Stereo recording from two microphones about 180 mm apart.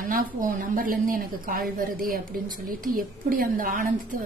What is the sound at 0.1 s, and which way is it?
A woman's voice, 50° right (ahead or behind).